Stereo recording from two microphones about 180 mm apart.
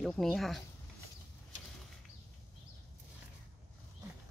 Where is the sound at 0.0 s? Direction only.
Centre (ahead or behind).